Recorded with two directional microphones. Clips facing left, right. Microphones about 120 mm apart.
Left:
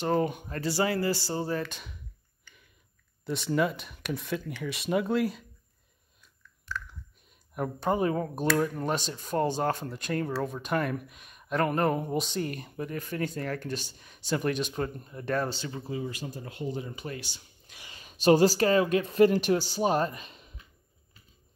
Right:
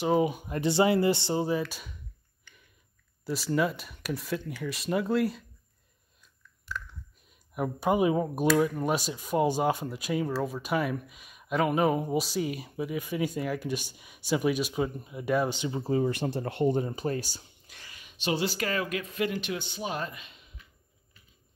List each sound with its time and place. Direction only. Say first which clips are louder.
0.0 s speech: right 2 dB; 5° right (ahead or behind)
0.5 s speech: right 4 dB; 20° right (ahead or behind)
1.6 s speech: right 2 dB; 5° right (ahead or behind)
2.4 s a sound: even; centre (ahead or behind)
3.3 s speech: even; centre (ahead or behind)
6.7 s speech: left 1 dB; centre (ahead or behind); by 15.8 s 15° right (ahead or behind)
15.8 s speech: right 9 dB; 40° right (ahead or behind)
16.1 s speech: right 8 dB; 65° right (ahead or behind)
16.8 s speech: right 7 dB; 40° right (ahead or behind)
17.9 s speech: left 9 dB; 40° left (ahead or behind)